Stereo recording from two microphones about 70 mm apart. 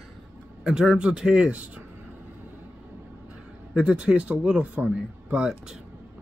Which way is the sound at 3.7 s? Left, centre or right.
Centre.